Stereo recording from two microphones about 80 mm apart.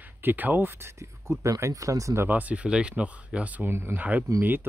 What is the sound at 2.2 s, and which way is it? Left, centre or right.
Speech, centre.